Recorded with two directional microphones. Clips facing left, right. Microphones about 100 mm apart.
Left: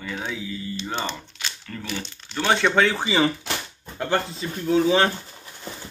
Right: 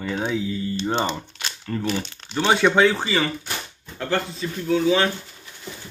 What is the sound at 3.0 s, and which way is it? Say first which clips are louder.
Speech: left 1 dB; 15° left (ahead or behind).